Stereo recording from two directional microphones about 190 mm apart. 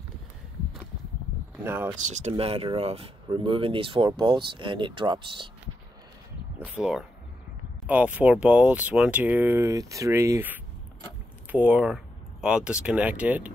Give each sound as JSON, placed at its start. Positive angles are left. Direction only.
{"t": 1.6, "sound": "speech", "side_deg": -10}
{"t": 2.0, "sound": "speech", "side_deg": -40}
{"t": 6.6, "sound": "speech", "side_deg": -5}